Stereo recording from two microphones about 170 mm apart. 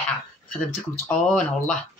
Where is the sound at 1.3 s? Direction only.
5° left (ahead or behind).